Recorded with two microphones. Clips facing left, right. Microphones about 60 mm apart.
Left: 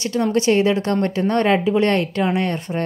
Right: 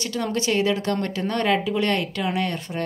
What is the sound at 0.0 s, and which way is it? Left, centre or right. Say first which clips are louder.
Speech: left 7 dB; left.